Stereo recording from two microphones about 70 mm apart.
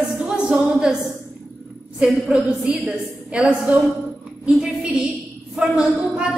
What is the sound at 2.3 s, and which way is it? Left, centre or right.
A woman's voice, centre.